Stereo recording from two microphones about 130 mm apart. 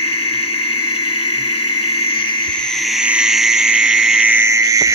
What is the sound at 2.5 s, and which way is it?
Frog, 5° left (ahead or behind).